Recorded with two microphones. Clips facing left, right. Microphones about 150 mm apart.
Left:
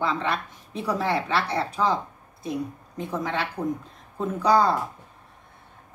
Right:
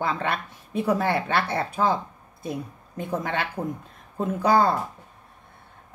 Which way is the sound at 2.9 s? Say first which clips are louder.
Right 1 dB; 55° right (ahead or behind).